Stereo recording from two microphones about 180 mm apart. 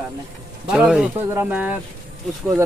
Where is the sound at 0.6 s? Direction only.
5° right (ahead or behind).